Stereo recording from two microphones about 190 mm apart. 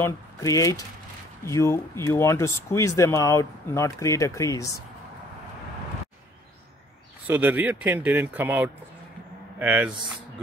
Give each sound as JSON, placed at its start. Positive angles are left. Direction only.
{"t": 0.0, "sound": "speech", "side_deg": 15}
{"t": 7.2, "sound": "speech", "side_deg": -10}